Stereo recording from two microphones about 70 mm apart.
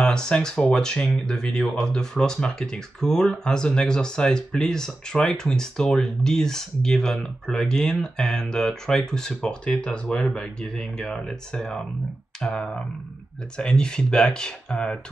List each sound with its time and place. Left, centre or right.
0.0 s speech: centre